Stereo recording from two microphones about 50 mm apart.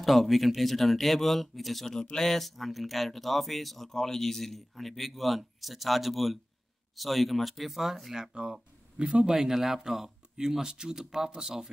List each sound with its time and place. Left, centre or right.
0.0 s speech: centre
2.0 s speech: centre
8.4 s speech: centre
9.3 s speech: centre